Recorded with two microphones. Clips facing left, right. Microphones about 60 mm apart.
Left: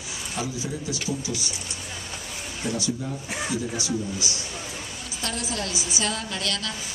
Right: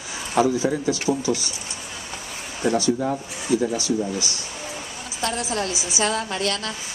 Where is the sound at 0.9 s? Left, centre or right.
Right.